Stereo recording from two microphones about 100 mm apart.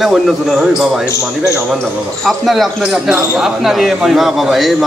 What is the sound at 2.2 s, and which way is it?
Speech, centre (ahead or behind).